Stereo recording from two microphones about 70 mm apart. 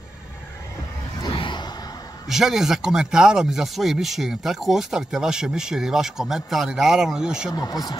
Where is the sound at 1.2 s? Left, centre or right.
Left.